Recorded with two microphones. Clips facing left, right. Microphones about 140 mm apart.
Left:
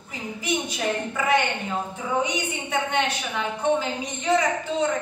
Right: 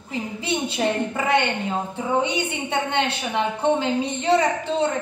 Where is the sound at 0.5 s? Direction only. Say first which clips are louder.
Right 2 dB; 30° right (ahead or behind).